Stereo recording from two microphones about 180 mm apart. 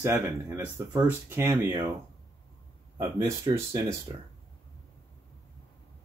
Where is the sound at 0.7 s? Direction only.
15° right (ahead or behind).